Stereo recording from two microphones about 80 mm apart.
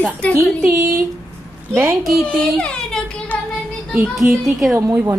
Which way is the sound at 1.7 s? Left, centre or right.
Right.